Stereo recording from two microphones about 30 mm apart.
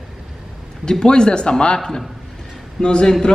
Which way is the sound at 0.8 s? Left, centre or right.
Left.